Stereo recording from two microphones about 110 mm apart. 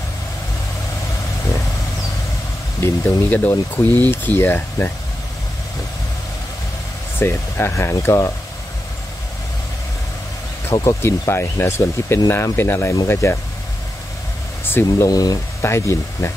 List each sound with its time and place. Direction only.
2.8 s speech: 15° left (ahead or behind)
7.2 s speech: 20° left (ahead or behind)
10.7 s speech: 30° left (ahead or behind)
14.6 s speech: 20° left (ahead or behind)
15.0 s speech: 35° left (ahead or behind)
15.6 s speech: 25° left (ahead or behind)